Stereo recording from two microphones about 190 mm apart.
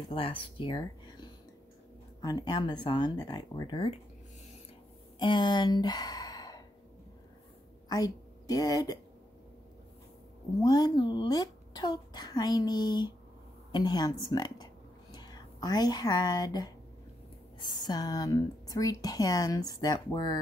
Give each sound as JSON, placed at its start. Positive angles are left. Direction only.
{"t": 0.1, "sound": "speech", "side_deg": 30}
{"t": 5.2, "sound": "speech", "side_deg": 25}
{"t": 7.9, "sound": "a woman's voice", "side_deg": 20}
{"t": 10.6, "sound": "speech", "side_deg": 20}